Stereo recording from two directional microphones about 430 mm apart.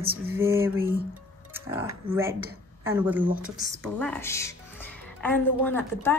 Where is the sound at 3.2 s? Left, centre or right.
Centre.